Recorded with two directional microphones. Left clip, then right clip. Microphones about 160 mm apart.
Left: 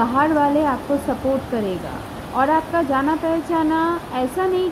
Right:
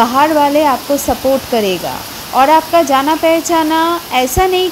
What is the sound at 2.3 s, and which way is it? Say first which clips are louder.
Speech: right 9 dB; 20° right (ahead or behind).